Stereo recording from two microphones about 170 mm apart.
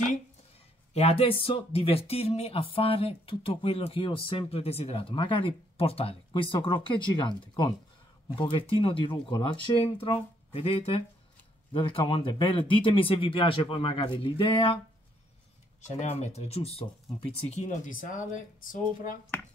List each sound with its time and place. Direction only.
0.9 s speech: 35° left (ahead or behind)
15.8 s speech: 40° left (ahead or behind)